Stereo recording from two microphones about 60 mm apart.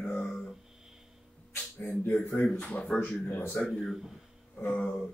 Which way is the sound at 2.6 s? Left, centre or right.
Centre.